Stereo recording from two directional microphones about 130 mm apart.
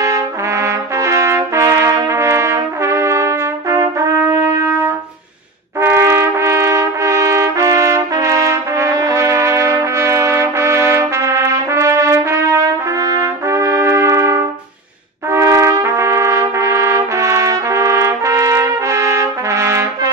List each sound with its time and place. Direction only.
0.0 s trumpet: 25° right (ahead or behind)